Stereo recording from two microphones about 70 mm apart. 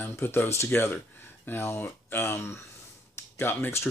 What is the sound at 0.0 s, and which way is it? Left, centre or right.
Speech, left.